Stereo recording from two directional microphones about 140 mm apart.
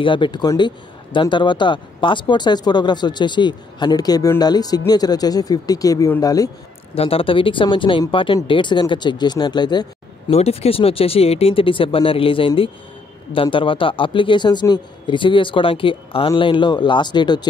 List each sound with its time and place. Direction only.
0.0 s speech: 35° left (ahead or behind)
7.0 s speech: 40° left (ahead or behind)
10.3 s speech: 45° left (ahead or behind); by 17.5 s 30° left (ahead or behind)